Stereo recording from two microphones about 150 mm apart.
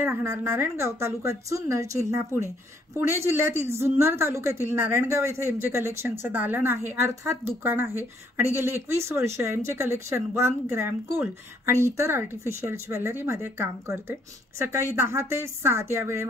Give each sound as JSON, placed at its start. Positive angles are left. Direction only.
{"t": 0.0, "sound": "a woman's voice", "side_deg": -15}